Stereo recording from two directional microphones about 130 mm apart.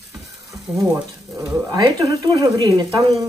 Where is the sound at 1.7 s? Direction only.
30° right (ahead or behind).